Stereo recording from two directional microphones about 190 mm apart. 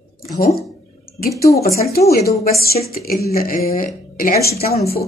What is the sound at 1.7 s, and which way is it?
Speech, 55° left (ahead or behind).